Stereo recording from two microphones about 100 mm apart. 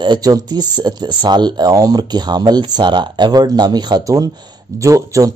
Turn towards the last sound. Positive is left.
turn(degrees=-35)  # may be behind; listen again after turning